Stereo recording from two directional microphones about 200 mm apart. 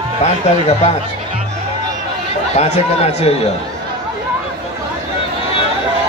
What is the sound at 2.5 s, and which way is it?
Music, 35° left (ahead or behind).